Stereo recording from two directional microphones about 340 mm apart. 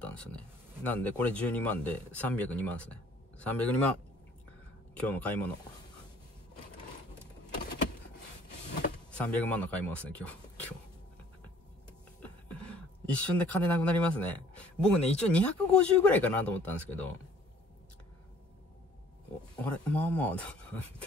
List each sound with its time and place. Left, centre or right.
0.0 s speech: centre
4.9 s speech: centre
9.1 s speech: centre
12.2 s speech: centre
19.6 s speech: centre